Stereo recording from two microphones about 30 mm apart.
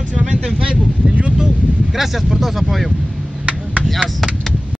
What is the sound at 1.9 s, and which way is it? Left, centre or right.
Speech, centre.